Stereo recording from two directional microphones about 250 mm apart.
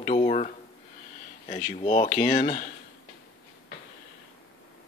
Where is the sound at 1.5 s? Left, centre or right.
Left.